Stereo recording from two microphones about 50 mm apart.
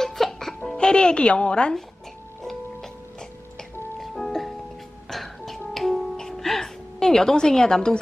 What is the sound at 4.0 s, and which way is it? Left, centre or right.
Music, centre.